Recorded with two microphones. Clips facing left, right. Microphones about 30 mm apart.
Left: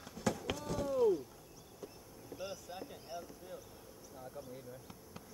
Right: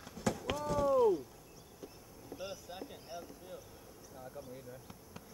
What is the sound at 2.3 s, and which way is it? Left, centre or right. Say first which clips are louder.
Boat: even; centre.